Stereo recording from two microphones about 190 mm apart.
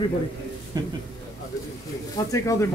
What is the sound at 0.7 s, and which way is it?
Speech, 20° right (ahead or behind).